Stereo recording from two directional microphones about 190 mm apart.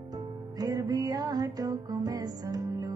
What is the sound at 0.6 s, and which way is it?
Music, 20° right (ahead or behind).